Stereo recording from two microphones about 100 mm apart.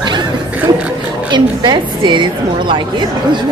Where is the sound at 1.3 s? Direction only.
50° right (ahead or behind).